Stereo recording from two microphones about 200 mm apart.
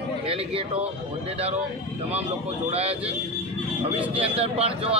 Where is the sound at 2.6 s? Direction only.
30° right (ahead or behind).